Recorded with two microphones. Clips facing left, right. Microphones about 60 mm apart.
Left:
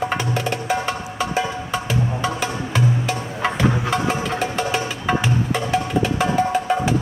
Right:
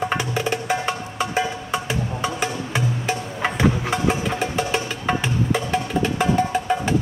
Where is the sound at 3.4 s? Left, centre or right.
Centre.